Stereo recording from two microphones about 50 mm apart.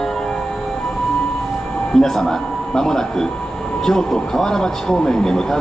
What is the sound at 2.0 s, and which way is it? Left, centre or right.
A man's voice, centre.